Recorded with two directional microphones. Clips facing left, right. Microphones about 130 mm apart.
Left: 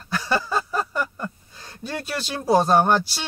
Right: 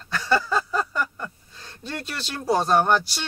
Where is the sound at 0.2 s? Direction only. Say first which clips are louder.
Right 2 dB; 15° left (ahead or behind).